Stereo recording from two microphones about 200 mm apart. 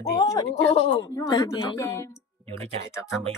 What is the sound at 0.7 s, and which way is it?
Speech, 30° left (ahead or behind).